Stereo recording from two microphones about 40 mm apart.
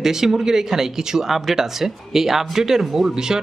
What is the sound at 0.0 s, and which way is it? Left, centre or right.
Speech, centre.